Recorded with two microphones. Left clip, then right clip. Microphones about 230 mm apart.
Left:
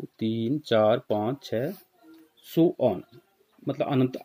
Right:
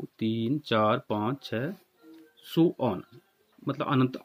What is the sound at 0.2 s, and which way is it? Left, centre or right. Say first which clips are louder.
Speech: left 2 dB; centre.